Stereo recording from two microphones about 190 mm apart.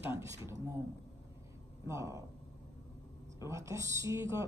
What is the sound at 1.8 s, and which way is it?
Speech, 15° right (ahead or behind).